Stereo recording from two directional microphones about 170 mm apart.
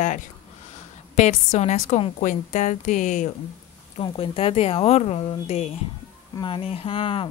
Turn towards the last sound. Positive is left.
turn(degrees=30)  # may be behind; listen again after turning